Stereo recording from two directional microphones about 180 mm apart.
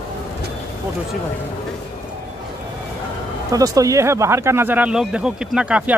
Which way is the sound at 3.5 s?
20° right (ahead or behind).